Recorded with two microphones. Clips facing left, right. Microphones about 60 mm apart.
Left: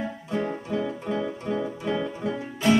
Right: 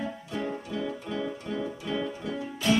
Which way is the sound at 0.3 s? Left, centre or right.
Left.